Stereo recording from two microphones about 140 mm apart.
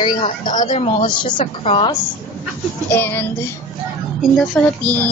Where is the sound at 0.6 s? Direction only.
60° left (ahead or behind).